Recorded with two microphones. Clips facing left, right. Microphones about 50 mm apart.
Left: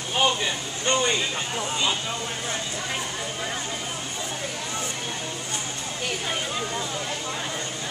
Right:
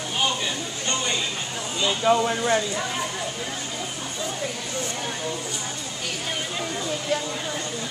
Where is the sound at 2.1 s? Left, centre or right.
Right.